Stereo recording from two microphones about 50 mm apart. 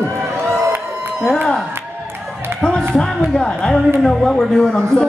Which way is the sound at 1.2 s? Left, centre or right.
Centre.